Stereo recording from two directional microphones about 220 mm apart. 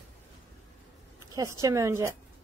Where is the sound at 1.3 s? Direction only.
15° right (ahead or behind).